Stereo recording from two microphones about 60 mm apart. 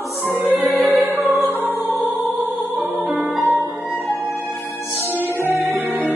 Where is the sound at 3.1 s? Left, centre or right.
Right.